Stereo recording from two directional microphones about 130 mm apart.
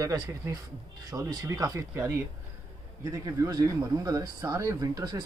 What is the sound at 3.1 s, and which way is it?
Speech, 25° right (ahead or behind).